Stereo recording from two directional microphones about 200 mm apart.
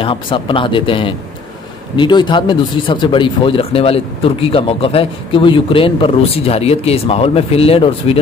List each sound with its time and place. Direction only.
0.0 s speech: 25° left (ahead or behind)